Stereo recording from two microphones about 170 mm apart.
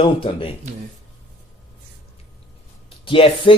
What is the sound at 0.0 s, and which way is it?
Speech, 30° left (ahead or behind).